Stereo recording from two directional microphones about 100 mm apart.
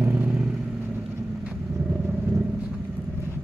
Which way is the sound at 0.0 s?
20° right (ahead or behind).